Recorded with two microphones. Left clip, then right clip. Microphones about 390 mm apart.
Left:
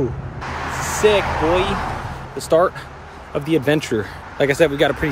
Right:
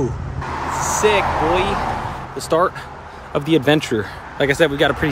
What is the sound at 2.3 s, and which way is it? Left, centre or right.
Speech, centre.